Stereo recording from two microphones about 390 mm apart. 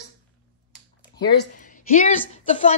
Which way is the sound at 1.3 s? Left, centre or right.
Left.